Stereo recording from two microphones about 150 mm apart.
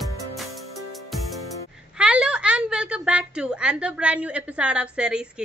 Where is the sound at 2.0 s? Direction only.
5° right (ahead or behind).